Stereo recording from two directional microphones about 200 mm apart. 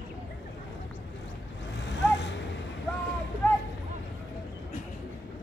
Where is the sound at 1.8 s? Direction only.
60° left (ahead or behind).